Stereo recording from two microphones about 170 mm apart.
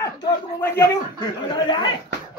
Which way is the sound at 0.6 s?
20° left (ahead or behind).